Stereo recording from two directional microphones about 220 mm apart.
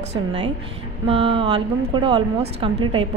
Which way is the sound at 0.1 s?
20° right (ahead or behind).